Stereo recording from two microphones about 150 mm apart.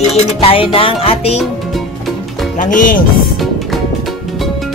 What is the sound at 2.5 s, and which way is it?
Speech, 60° left (ahead or behind).